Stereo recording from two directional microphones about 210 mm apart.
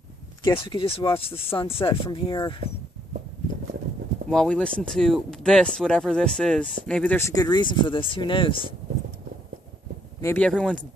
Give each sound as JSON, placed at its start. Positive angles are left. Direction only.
{"t": 0.6, "sound": "speech", "side_deg": 25}
{"t": 4.3, "sound": "speech", "side_deg": 5}
{"t": 10.2, "sound": "speech", "side_deg": 5}